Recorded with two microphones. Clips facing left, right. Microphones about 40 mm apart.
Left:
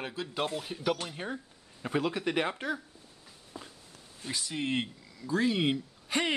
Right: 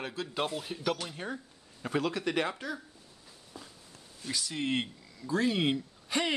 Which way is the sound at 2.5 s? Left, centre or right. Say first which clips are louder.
Left 4 dB; left.